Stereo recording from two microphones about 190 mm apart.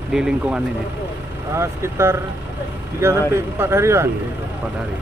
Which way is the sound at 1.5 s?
15° right (ahead or behind).